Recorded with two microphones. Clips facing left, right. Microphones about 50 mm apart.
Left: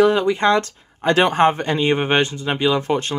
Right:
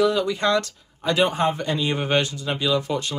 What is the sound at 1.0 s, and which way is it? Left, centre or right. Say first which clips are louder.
Speech: left 5 dB; left.